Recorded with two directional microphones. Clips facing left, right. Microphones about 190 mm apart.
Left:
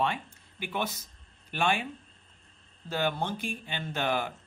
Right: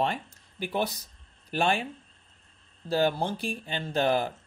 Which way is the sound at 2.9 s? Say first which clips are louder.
Right 5 dB; 35° right (ahead or behind).